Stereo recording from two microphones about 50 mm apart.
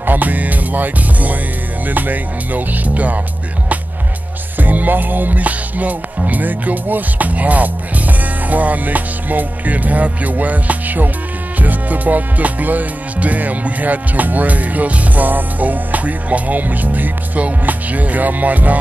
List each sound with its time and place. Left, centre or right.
0.0 s music: right
4.6 s music: right